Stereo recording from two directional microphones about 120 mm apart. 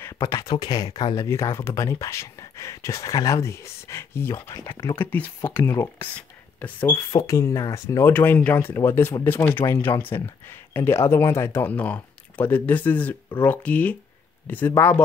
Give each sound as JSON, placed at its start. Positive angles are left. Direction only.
{"t": 0.0, "sound": "speech", "side_deg": 25}
{"t": 7.1, "sound": "speech", "side_deg": 30}